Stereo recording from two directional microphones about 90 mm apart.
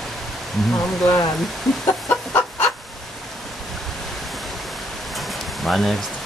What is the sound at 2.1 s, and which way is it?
Chicken, 25° left (ahead or behind).